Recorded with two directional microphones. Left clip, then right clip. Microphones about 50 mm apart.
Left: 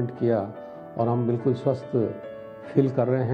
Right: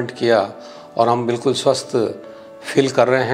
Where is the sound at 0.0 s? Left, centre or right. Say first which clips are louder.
Right 9 dB; right.